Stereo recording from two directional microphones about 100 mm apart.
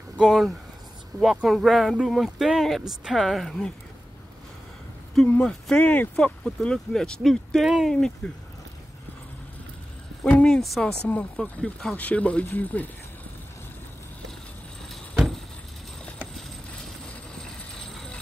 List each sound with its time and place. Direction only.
0.2 s speech: centre (ahead or behind)
5.4 s speech: 10° left (ahead or behind)
10.3 s speech: 10° left (ahead or behind)
11.1 s speech: 15° left (ahead or behind)
16.3 s vehicle: 5° left (ahead or behind)